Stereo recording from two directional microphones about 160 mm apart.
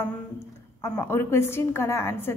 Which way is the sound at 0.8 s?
15° left (ahead or behind).